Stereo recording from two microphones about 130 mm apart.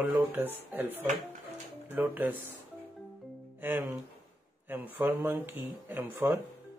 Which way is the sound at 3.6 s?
15° right (ahead or behind).